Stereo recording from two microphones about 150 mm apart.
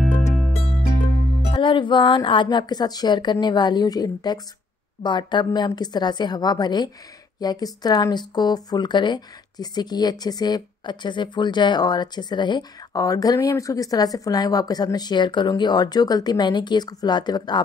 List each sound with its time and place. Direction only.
0.1 s music: centre (ahead or behind)
1.5 s speech: 35° left (ahead or behind)